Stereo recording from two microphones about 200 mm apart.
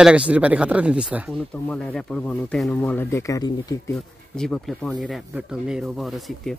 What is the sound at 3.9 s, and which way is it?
Speech, 5° left (ahead or behind).